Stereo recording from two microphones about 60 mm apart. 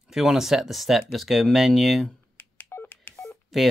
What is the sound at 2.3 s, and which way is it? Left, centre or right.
Telephone dialing, left.